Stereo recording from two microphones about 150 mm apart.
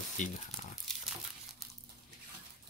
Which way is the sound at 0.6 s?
55° left (ahead or behind).